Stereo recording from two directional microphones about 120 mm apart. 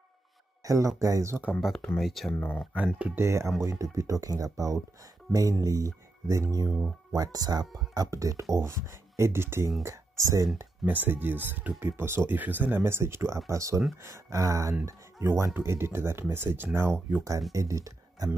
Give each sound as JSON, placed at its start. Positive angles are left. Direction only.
{"t": 0.7, "sound": "speech", "side_deg": -25}
{"t": 1.5, "sound": "speech", "side_deg": 0}
{"t": 3.2, "sound": "speech", "side_deg": -25}
{"t": 10.9, "sound": "speech", "side_deg": -15}